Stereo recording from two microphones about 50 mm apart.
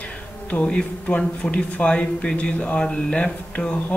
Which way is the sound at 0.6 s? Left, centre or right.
Left.